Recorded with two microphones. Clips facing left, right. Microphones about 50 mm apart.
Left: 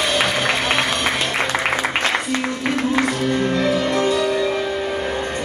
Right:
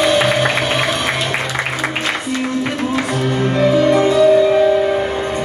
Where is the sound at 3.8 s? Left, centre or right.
Right.